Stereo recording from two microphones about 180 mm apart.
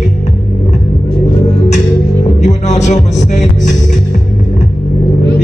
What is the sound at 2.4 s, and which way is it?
Music, 40° left (ahead or behind).